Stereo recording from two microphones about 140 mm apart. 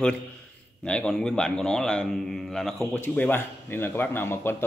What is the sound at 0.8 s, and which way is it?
A man's voice, 5° left (ahead or behind).